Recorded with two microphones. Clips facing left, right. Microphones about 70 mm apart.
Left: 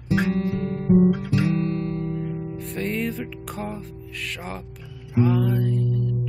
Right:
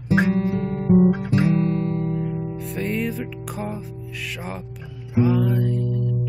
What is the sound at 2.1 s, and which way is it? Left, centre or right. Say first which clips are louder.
Music: right 3 dB; centre.